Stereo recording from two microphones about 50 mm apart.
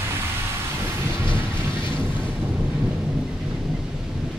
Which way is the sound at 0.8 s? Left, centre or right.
Right.